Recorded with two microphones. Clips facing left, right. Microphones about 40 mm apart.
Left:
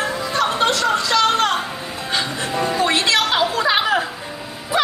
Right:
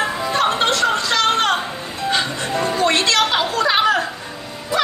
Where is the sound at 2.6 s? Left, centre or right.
Centre.